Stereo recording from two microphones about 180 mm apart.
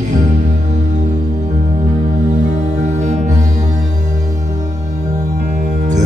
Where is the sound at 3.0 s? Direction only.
40° right (ahead or behind).